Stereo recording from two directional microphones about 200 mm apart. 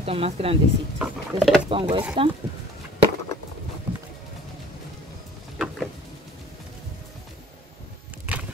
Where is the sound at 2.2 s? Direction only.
25° right (ahead or behind).